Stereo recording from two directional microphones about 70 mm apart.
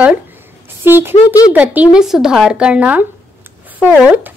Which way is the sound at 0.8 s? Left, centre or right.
Right.